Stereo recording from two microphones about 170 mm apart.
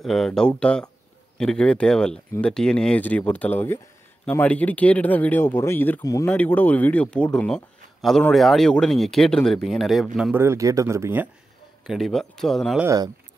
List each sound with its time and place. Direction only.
0.0 s speech: centre (ahead or behind)
10.4 s speech: 15° right (ahead or behind)
11.8 s speech: centre (ahead or behind)
12.8 s speech: 20° right (ahead or behind)